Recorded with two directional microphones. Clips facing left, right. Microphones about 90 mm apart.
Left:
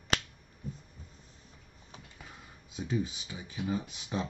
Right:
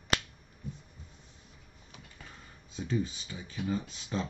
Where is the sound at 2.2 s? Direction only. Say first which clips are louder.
Left 1 dB; 10° left (ahead or behind).